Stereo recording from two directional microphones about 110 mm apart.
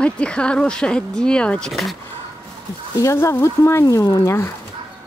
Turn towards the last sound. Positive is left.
turn(degrees=25)  # may be behind; listen again after turning